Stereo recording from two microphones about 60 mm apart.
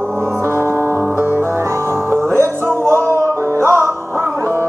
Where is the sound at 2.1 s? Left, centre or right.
Right.